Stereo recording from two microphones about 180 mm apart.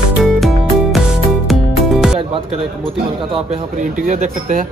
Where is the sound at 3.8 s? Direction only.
45° right (ahead or behind).